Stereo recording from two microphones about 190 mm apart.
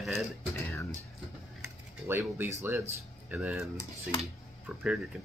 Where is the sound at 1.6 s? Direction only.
10° right (ahead or behind).